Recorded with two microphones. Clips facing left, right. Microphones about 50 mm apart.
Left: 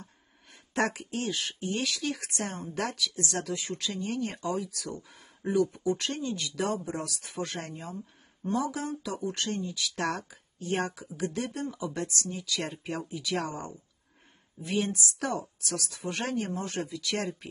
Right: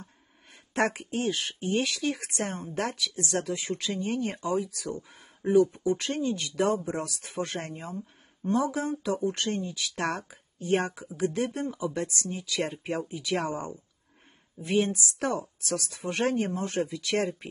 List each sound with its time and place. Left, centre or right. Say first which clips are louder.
0.7 s speech: right 2 dB; right
11.0 s speech: right 4 dB; right